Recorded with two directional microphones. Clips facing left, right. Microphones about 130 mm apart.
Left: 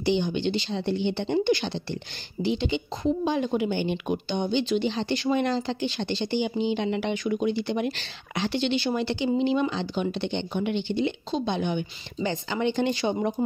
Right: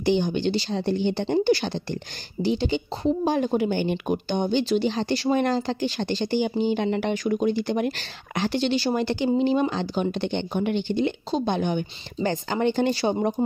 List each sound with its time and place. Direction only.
0.0 s speech: 45° right (ahead or behind)